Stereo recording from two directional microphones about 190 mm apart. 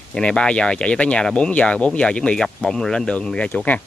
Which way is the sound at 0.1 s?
5° left (ahead or behind).